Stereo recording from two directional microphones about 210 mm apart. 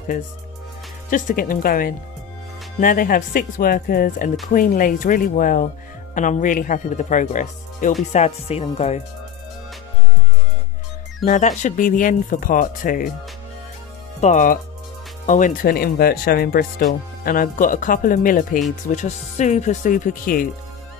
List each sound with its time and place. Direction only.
1.1 s speech: 40° left (ahead or behind)
11.2 s speech: 35° left (ahead or behind)
14.2 s speech: 40° left (ahead or behind)